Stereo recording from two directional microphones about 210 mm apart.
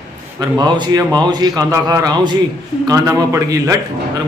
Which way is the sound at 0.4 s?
20° right (ahead or behind).